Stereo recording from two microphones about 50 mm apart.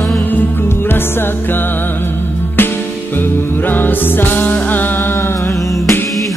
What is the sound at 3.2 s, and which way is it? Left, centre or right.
Music, left.